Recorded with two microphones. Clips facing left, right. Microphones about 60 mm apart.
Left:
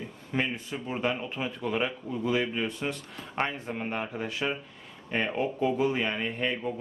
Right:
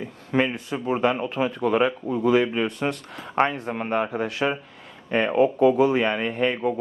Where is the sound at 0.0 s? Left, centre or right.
Right.